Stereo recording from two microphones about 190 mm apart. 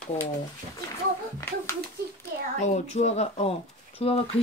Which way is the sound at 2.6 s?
35° left (ahead or behind).